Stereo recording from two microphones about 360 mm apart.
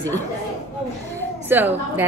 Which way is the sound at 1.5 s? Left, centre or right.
Centre.